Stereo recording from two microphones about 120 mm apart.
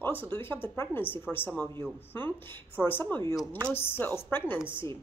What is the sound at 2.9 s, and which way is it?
Speech, 15° left (ahead or behind).